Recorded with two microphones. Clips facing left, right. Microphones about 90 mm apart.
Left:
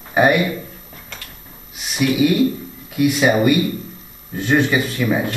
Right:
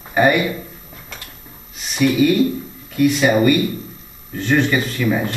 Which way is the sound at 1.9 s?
5° left (ahead or behind).